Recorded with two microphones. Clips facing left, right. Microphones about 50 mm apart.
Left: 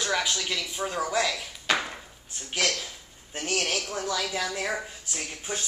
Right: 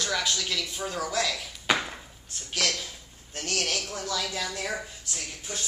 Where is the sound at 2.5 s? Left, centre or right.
Centre.